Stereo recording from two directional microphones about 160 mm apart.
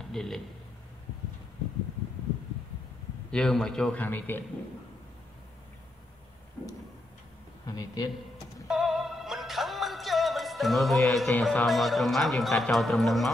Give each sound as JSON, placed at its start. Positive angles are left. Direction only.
{"t": 0.1, "sound": "speech", "side_deg": 0}
{"t": 3.3, "sound": "a man's voice", "side_deg": 5}
{"t": 7.6, "sound": "a man's voice", "side_deg": 25}
{"t": 8.6, "sound": "music", "side_deg": 0}